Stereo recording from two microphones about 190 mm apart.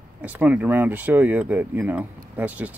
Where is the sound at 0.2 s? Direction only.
10° right (ahead or behind).